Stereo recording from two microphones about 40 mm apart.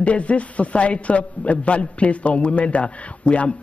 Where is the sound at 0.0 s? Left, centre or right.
Left.